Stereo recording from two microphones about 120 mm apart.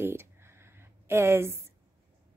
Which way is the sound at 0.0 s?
20° right (ahead or behind).